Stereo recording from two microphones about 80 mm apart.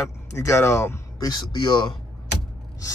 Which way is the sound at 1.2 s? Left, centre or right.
Left.